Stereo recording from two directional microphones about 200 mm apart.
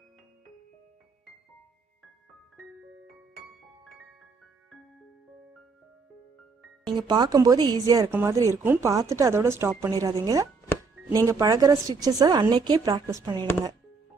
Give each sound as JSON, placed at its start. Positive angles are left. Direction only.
{"t": 6.9, "sound": "a woman's voice", "side_deg": -20}